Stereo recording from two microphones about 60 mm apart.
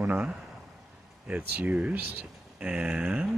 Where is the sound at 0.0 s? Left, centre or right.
Right.